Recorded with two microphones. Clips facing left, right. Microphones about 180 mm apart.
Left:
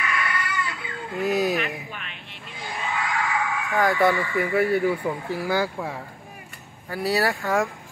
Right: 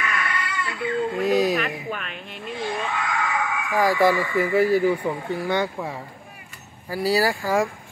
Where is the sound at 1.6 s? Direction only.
45° right (ahead or behind).